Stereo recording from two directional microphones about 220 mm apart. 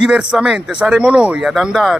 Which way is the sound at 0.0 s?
5° right (ahead or behind).